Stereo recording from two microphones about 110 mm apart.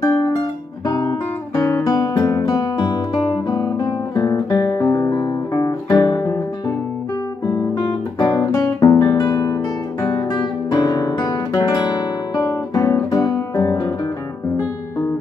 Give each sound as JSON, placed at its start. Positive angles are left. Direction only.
{"t": 0.0, "sound": "music", "side_deg": 35}
{"t": 0.8, "sound": "guitar", "side_deg": 30}
{"t": 8.2, "sound": "guitar", "side_deg": 40}
{"t": 8.8, "sound": "guitar", "side_deg": 25}